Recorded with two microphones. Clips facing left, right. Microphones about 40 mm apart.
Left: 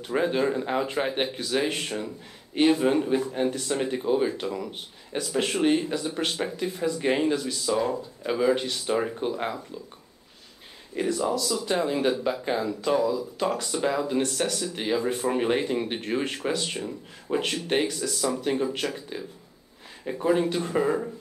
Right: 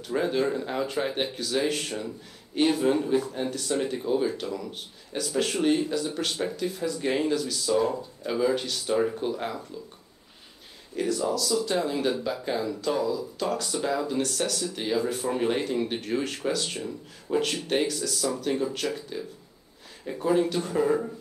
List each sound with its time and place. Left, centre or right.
0.0 s speech: left
11.0 s speech: left